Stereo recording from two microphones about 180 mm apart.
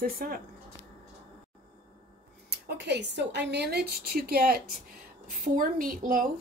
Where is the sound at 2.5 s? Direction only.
70° right (ahead or behind).